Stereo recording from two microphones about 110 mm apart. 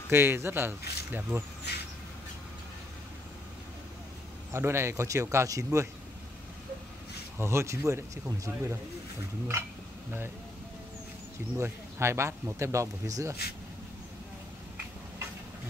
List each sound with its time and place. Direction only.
0.1 s speech: 20° right (ahead or behind)
4.5 s speech: 25° right (ahead or behind)
7.3 s speech: 25° right (ahead or behind)
11.5 s speech: 25° right (ahead or behind)